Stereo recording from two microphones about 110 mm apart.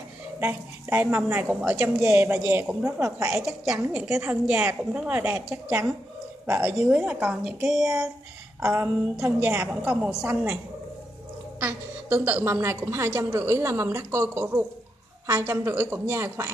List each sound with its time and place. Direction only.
0.4 s a woman's voice: 20° right (ahead or behind)
2.8 s a woman's voice: 30° right (ahead or behind)
3.3 s a woman's voice: 5° right (ahead or behind); by 6.7 s 25° right (ahead or behind)
6.7 s a woman's voice: 5° right (ahead or behind)
8.5 s a woman's voice: 20° right (ahead or behind)
9.7 s a woman's voice: 10° right (ahead or behind)
11.6 s a woman's voice: 20° right (ahead or behind)